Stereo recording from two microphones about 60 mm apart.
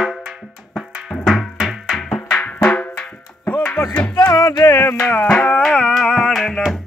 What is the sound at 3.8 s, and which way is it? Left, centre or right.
Music, left.